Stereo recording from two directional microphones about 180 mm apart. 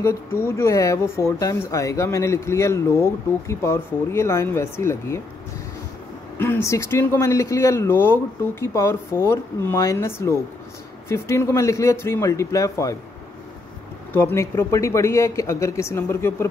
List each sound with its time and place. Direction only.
0.0 s speech: 15° left (ahead or behind)
6.3 s speech: 10° left (ahead or behind)
14.1 s speech: 15° left (ahead or behind)